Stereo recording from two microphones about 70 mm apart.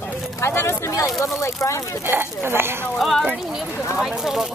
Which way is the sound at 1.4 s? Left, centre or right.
Left.